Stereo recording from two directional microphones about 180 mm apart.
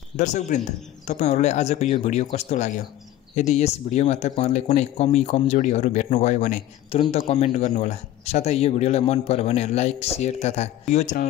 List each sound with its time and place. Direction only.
0.2 s speech: 40° left (ahead or behind)